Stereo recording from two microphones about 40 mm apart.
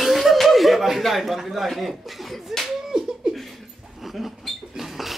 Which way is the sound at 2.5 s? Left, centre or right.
Centre.